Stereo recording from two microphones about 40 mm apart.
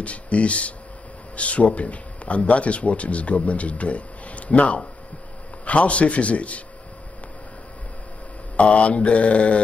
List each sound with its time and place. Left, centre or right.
0.0 s a man's voice: left
8.5 s a man's voice: left